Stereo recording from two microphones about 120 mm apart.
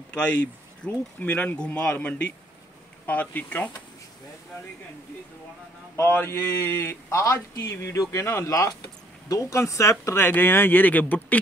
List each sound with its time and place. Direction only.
0.8 s speech: 10° left (ahead or behind)
5.9 s a man's voice: 20° left (ahead or behind)